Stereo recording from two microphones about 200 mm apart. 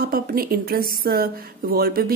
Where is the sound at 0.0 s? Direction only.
45° right (ahead or behind).